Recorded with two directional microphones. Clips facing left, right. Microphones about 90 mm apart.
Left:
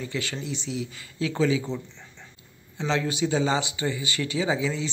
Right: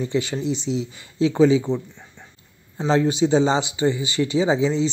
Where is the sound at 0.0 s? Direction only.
20° right (ahead or behind).